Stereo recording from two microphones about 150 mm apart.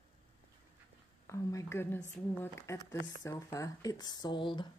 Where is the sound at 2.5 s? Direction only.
20° left (ahead or behind).